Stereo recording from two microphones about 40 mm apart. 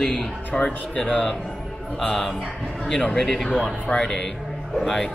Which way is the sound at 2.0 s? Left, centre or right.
Centre.